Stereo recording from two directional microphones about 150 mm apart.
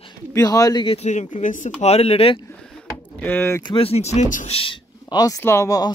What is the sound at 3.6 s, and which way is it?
Speech, 40° left (ahead or behind).